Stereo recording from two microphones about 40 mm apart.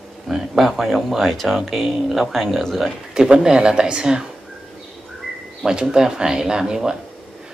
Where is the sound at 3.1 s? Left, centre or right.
Centre.